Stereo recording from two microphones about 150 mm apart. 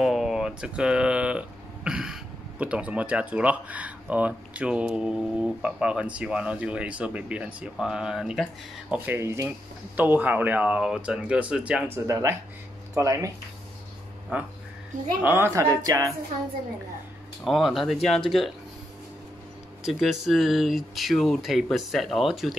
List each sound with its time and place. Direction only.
0.0 s speech: 5° right (ahead or behind)
1.9 s a sound: 5° right (ahead or behind)
2.6 s speech: 10° right (ahead or behind)
8.9 s speech: 15° right (ahead or behind)
12.1 s speech: 20° right (ahead or behind)
14.3 s speech: 10° right (ahead or behind)
17.5 s speech: centre (ahead or behind)
19.8 s speech: centre (ahead or behind)